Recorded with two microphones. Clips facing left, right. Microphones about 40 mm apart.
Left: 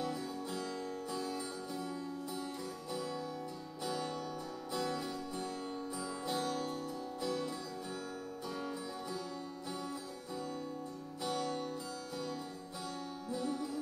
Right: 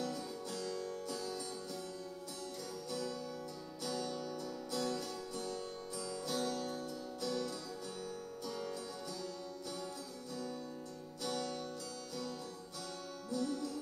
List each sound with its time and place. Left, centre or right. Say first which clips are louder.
0.0 s music: left 2 dB; left
2.9 s music: left 1 dB; left
11.2 s music: left 3 dB; left
13.3 s music: even; left